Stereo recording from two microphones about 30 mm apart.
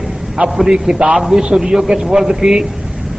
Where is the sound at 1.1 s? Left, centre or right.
Centre.